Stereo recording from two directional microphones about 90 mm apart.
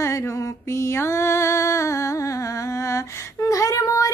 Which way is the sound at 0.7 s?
30° left (ahead or behind).